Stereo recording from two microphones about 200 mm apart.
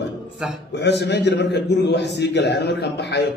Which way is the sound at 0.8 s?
60° left (ahead or behind).